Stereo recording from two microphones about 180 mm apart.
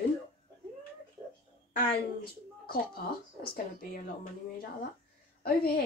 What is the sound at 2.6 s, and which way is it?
A woman's voice, 55° left (ahead or behind).